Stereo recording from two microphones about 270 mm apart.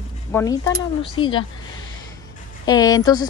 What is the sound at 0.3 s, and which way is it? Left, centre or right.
A woman's voice, centre.